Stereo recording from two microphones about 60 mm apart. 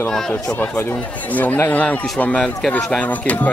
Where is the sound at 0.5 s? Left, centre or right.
Left.